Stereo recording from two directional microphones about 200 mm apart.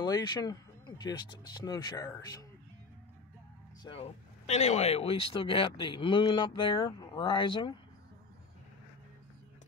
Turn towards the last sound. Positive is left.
turn(degrees=25)  # may be behind; listen again after turning